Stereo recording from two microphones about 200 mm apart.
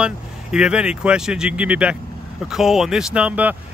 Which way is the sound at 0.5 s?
5° right (ahead or behind).